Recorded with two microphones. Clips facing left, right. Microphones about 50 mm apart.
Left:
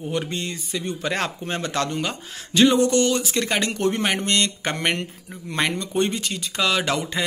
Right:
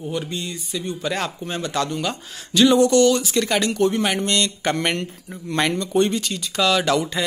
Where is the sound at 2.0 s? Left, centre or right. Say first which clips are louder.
Right 1 dB; left.